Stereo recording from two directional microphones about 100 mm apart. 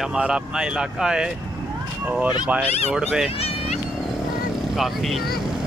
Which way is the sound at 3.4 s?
80° left.